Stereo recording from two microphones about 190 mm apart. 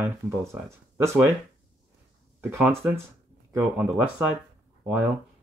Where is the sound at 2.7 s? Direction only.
5° right (ahead or behind).